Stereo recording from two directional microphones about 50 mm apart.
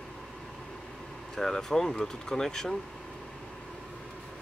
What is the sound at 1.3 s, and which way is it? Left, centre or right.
Speech, centre.